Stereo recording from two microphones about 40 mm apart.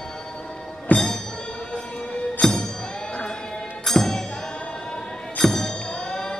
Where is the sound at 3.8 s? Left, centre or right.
Centre.